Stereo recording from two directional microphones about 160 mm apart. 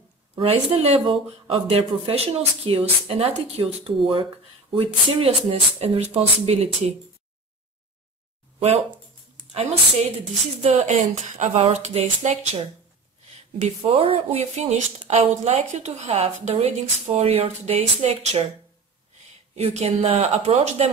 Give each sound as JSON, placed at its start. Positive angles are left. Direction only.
{"t": 0.4, "sound": "speech", "side_deg": -35}
{"t": 8.5, "sound": "speech", "side_deg": -40}
{"t": 10.6, "sound": "speech", "side_deg": -45}
{"t": 19.5, "sound": "speech", "side_deg": -40}